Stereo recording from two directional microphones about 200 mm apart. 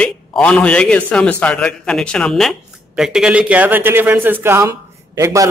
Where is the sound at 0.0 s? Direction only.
5° left (ahead or behind).